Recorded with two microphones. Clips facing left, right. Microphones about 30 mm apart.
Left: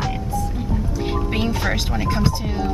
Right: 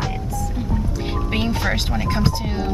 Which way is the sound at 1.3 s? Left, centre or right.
Centre.